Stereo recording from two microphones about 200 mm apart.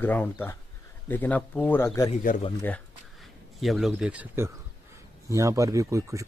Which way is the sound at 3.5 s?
Centre (ahead or behind).